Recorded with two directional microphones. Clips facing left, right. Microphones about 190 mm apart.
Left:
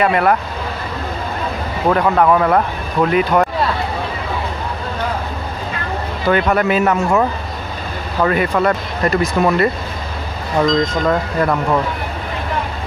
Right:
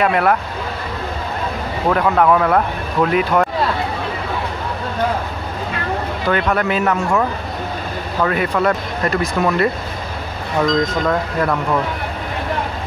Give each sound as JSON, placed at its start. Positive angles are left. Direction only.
{"t": 0.0, "sound": "speech", "side_deg": 0}
{"t": 1.9, "sound": "speech", "side_deg": 5}
{"t": 6.2, "sound": "speech", "side_deg": 5}
{"t": 11.1, "sound": "speech", "side_deg": 5}